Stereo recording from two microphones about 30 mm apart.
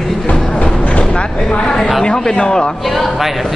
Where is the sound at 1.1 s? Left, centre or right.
Left.